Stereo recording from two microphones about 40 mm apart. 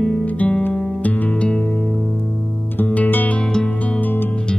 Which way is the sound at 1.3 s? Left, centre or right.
Left.